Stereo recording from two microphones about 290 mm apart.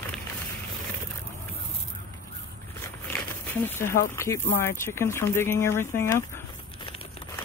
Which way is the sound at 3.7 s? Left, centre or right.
Centre.